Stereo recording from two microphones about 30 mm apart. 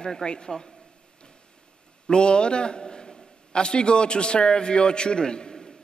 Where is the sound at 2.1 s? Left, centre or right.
Left.